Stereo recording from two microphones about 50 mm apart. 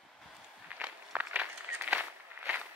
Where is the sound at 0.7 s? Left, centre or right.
Right.